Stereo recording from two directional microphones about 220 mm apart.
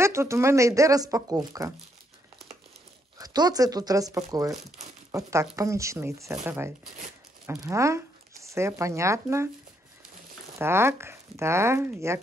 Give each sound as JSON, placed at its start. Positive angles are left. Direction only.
{"t": 0.0, "sound": "speech", "side_deg": -10}
{"t": 3.2, "sound": "speech", "side_deg": -15}
{"t": 10.6, "sound": "speech", "side_deg": -10}